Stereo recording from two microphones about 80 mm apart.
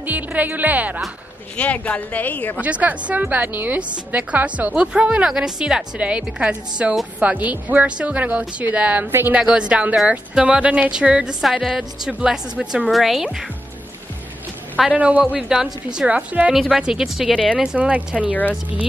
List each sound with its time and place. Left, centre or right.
0.0 s speech: right
1.6 s speech: centre
2.6 s a woman's voice: centre
12.8 s speech: centre
14.9 s a woman's voice: centre
16.5 s speech: centre
17.7 s speech: centre